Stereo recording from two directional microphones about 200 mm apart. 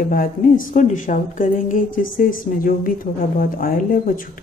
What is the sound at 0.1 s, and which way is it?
A woman's voice, 45° left (ahead or behind).